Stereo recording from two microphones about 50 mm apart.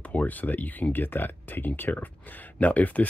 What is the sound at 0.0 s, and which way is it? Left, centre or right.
Speech, left.